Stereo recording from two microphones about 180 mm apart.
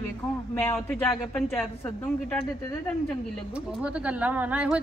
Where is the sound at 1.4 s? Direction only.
5° left (ahead or behind).